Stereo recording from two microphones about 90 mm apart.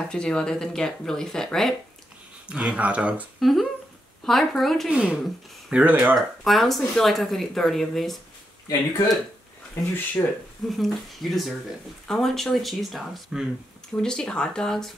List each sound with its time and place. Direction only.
0.1 s speech: 10° left (ahead or behind)
2.4 s speech: 10° right (ahead or behind)
3.3 s speech: centre (ahead or behind)
4.9 s speech: 10° right (ahead or behind)
6.1 s speech: centre (ahead or behind)
8.6 s speech: 45° left (ahead or behind)
10.2 s speech: 35° left (ahead or behind)
10.7 s speech: centre (ahead or behind)
13.9 s speech: 10° left (ahead or behind)